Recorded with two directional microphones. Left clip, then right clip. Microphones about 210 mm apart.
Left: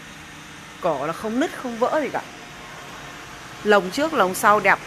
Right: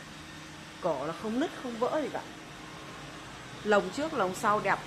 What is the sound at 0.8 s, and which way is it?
Speech, 20° left (ahead or behind).